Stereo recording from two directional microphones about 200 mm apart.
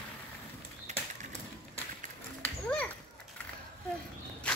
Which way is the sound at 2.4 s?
5° left (ahead or behind).